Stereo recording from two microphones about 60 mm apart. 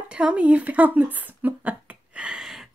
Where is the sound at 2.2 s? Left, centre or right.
Centre.